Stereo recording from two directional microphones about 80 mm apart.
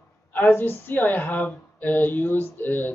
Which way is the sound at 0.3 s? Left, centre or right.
Left.